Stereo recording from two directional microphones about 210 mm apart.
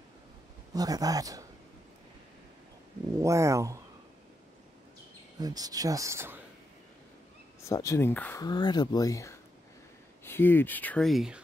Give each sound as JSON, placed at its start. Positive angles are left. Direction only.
{"t": 0.7, "sound": "speech", "side_deg": -15}
{"t": 3.2, "sound": "speech", "side_deg": -15}
{"t": 5.4, "sound": "speech", "side_deg": -20}
{"t": 7.6, "sound": "speech", "side_deg": 15}